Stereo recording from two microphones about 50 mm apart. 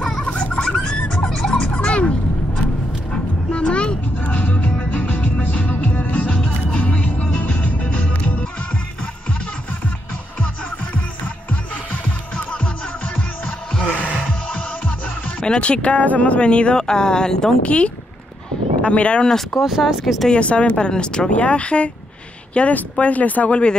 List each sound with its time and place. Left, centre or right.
0.2 s pig: left
1.2 s music: centre
1.7 s music: left
13.8 s music: right
15.4 s speech: left
17.6 s speech: left
19.6 s speech: centre
20.2 s speech: left